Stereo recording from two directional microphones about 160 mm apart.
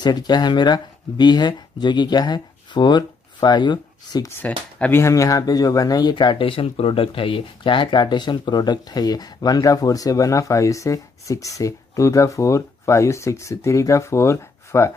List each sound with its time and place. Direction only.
0.0 s speech: 25° left (ahead or behind)
4.4 s speech: 10° left (ahead or behind)